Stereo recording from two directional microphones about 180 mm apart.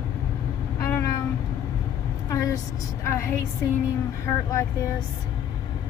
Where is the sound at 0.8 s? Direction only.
15° left (ahead or behind).